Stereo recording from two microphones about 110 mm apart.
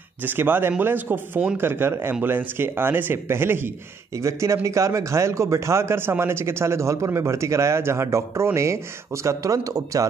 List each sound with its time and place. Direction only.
0.2 s speech: 20° right (ahead or behind)